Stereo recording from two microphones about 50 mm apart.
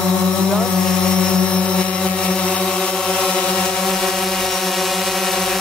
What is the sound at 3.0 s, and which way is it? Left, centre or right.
Chant, centre.